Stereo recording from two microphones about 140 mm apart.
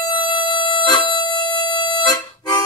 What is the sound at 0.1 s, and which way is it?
Music, 35° left (ahead or behind).